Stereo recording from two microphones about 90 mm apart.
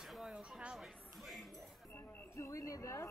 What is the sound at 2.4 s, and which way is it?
Speech, 35° left (ahead or behind).